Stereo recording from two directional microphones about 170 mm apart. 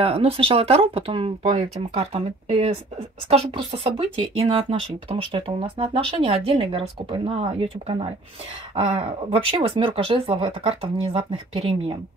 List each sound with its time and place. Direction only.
0.0 s speech: 35° right (ahead or behind)